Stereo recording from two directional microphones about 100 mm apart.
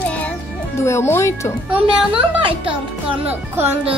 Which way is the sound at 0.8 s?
25° left (ahead or behind).